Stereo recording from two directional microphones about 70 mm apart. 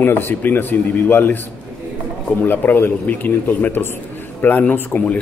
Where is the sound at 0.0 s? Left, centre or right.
Left.